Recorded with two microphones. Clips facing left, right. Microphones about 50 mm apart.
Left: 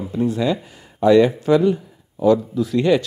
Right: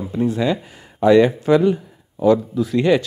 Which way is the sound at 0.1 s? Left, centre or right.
Right.